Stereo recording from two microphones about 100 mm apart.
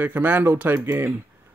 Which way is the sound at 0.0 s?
20° right (ahead or behind).